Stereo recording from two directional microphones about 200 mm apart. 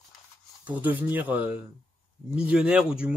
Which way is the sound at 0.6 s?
10° right (ahead or behind).